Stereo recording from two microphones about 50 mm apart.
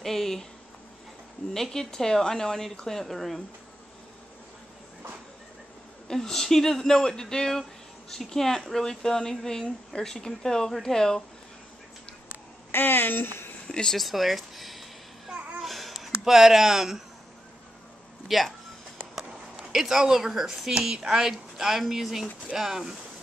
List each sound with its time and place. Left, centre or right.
0.0 s speech: centre
1.5 s speech: centre
6.0 s speech: centre
12.7 s speech: left
13.7 s a sound: centre
13.9 s a sound: centre
15.3 s babbling: right
15.6 s a sound: centre
18.3 s speech: centre
19.7 s speech: centre